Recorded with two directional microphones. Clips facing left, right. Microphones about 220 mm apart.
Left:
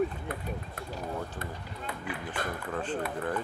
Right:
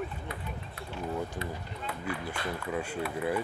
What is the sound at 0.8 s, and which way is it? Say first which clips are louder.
Speech: right 4 dB; 50° left (ahead or behind).